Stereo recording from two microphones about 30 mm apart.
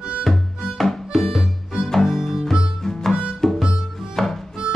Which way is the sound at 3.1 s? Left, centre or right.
Right.